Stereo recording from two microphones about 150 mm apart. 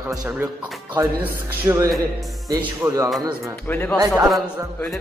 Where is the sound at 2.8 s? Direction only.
20° right (ahead or behind).